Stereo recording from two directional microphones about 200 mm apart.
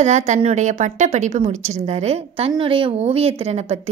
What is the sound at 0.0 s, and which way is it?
A woman's voice, 35° right (ahead or behind).